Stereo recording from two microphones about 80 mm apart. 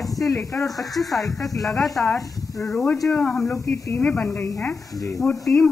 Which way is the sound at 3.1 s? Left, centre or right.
Centre.